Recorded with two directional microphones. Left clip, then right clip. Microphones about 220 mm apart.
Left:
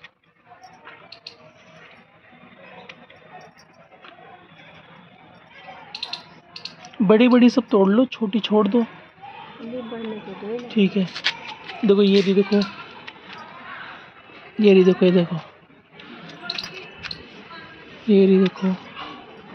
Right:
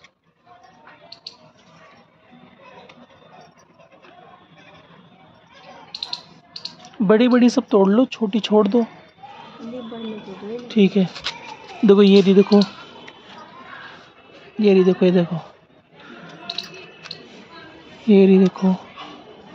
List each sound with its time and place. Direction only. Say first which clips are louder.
6.8 s speech: even; 5° left (ahead or behind)
10.7 s speech: right 5 dB; 15° right (ahead or behind)
11.8 s speech: right 4 dB; 25° right (ahead or behind)
14.6 s speech: left 1 dB; 5° left (ahead or behind)
18.0 s speech: right 2 dB; 10° right (ahead or behind)